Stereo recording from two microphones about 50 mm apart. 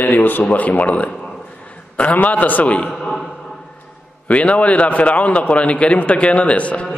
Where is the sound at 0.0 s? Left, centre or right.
Left.